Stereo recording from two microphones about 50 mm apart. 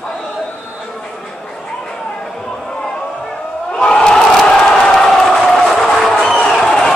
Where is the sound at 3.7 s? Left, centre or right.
Centre.